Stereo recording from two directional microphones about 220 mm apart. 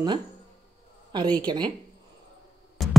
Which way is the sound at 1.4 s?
20° right (ahead or behind).